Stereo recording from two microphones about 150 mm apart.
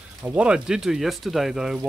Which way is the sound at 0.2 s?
10° right (ahead or behind).